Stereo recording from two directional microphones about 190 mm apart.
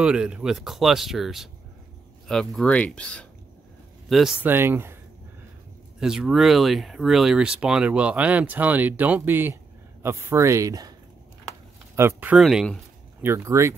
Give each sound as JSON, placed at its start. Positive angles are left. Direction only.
{"t": 0.0, "sound": "speech", "side_deg": -5}
{"t": 5.9, "sound": "speech", "side_deg": -5}
{"t": 13.2, "sound": "speech", "side_deg": -15}